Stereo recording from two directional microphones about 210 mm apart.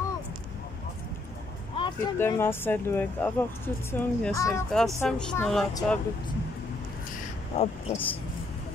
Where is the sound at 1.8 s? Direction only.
25° left (ahead or behind).